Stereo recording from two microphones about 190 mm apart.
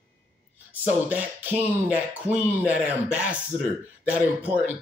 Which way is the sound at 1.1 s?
10° right (ahead or behind).